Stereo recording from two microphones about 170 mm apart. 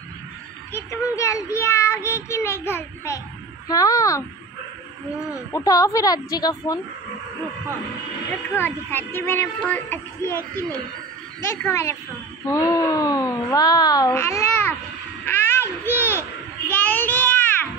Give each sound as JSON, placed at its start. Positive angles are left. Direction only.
{"t": 1.1, "sound": "a child's voice", "side_deg": 20}
{"t": 5.5, "sound": "a woman's voice", "side_deg": 20}
{"t": 8.5, "sound": "a child's voice", "side_deg": 15}
{"t": 11.5, "sound": "a child's voice", "side_deg": 15}
{"t": 15.2, "sound": "a sound", "side_deg": 10}